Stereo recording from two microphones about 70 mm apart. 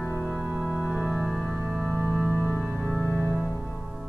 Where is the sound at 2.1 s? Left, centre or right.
Centre.